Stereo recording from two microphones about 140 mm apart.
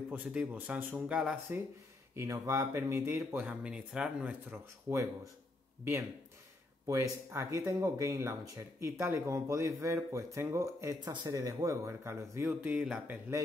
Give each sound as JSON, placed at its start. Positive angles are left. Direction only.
{"t": 0.1, "sound": "speech", "side_deg": -10}
{"t": 2.1, "sound": "speech", "side_deg": -20}
{"t": 6.9, "sound": "speech", "side_deg": -20}